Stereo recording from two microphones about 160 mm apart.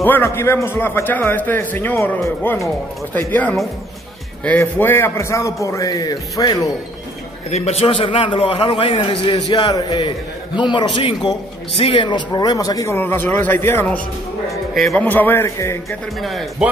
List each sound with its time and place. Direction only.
0.0 s a man's voice: 15° left (ahead or behind)
7.5 s a man's voice: 40° left (ahead or behind); by 14.0 s 15° left (ahead or behind)
14.7 s speech: centre (ahead or behind)
15.0 s a man's voice: 10° left (ahead or behind)
16.2 s speech: centre (ahead or behind)